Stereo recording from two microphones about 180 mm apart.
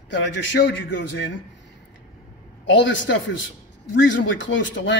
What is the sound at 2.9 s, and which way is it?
A man's voice, 90° left.